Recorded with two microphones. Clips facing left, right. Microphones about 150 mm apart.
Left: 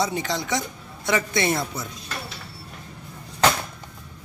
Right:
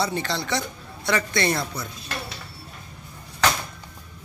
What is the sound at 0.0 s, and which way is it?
Speech, 15° left (ahead or behind).